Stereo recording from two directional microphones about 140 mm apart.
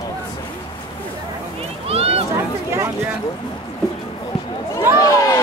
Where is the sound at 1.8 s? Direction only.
45° right (ahead or behind).